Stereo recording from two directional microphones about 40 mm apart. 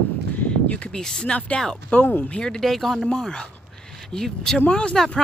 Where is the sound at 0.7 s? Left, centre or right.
Left.